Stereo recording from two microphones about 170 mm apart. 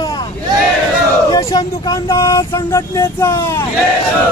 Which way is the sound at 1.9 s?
20° left (ahead or behind).